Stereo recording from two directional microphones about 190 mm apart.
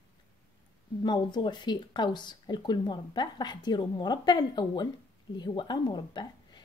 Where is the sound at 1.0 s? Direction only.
25° left (ahead or behind).